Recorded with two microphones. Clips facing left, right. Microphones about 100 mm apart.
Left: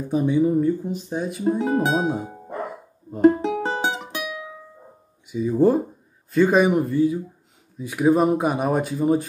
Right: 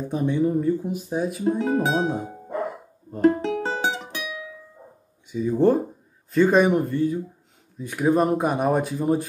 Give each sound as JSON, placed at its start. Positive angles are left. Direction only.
{"t": 0.1, "sound": "speech", "side_deg": 5}
{"t": 3.1, "sound": "music", "side_deg": 5}
{"t": 5.2, "sound": "speech", "side_deg": 10}